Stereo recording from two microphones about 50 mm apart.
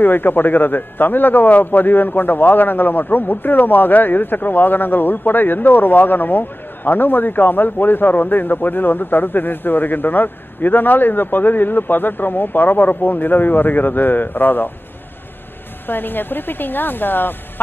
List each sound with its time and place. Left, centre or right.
0.0 s a man's voice: left
15.9 s speech: left